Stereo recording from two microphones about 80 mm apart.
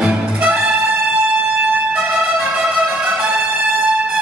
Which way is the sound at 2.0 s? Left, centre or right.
Centre.